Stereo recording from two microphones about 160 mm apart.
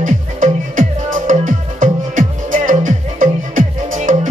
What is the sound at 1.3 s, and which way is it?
Music, 55° right (ahead or behind).